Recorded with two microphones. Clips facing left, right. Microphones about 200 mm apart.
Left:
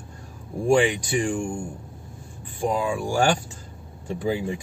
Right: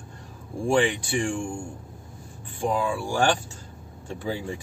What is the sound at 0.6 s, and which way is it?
Speech, 15° left (ahead or behind).